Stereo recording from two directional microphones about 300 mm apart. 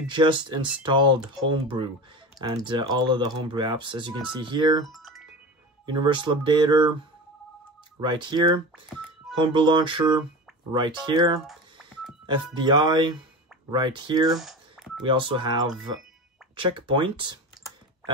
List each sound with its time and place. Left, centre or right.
0.0 s speech: centre
4.8 s music: centre
5.9 s speech: centre
8.0 s speech: centre
12.5 s speech: centre
14.3 s telephone dialing: centre
15.0 s speech: centre
16.5 s typing: centre